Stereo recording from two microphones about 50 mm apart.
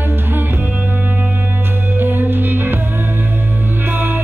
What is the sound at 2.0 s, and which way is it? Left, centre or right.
Music, right.